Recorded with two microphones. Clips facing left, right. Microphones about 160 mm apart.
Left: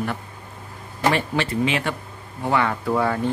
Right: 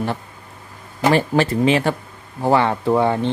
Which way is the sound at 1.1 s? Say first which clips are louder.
Right 6 dB; 40° right (ahead or behind).